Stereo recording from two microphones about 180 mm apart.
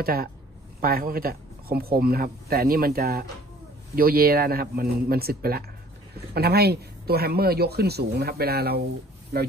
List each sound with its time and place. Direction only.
0.0 s speech: 55° right (ahead or behind)